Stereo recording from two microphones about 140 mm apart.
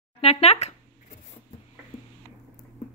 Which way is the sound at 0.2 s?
45° left (ahead or behind).